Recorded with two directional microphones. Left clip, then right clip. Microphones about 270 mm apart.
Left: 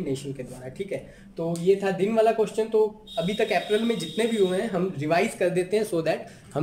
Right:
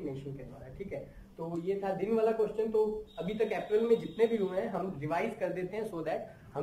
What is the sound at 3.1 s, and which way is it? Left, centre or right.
Speech, left.